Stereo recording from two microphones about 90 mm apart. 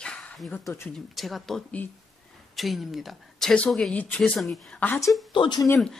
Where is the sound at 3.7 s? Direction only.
10° left (ahead or behind).